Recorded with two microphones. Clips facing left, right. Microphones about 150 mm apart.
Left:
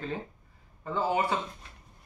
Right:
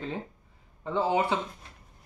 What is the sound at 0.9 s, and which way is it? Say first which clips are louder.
Speech: right 2 dB; 20° right (ahead or behind).